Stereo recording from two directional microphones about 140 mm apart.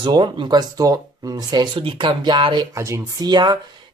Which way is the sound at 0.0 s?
35° right (ahead or behind).